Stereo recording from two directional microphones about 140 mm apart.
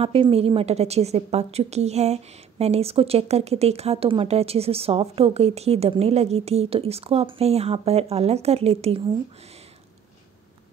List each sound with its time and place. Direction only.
0.0 s a woman's voice: 45° right (ahead or behind)